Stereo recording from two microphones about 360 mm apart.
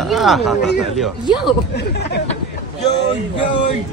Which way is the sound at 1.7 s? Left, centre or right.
Left.